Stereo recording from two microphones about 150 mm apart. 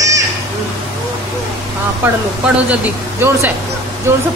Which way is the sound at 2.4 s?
10° right (ahead or behind).